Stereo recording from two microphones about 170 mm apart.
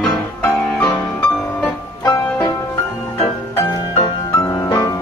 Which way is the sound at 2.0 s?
20° left (ahead or behind).